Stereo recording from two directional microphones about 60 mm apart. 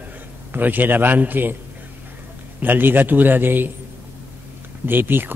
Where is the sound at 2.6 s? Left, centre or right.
Right.